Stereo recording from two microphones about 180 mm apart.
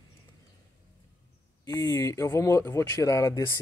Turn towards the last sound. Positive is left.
turn(degrees=15)  # may be behind; listen again after turning